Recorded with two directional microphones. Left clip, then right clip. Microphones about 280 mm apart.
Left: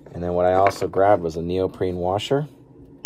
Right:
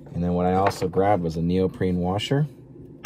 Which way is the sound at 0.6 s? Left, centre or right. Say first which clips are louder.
Left 4 dB; centre.